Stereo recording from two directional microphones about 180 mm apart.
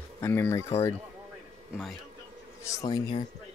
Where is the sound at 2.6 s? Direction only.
20° left (ahead or behind).